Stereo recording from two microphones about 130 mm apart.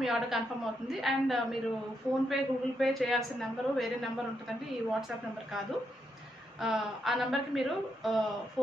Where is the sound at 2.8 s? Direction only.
Centre (ahead or behind).